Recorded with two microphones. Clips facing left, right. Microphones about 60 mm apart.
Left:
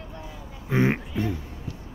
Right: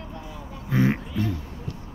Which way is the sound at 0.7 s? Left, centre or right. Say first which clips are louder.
Even; left.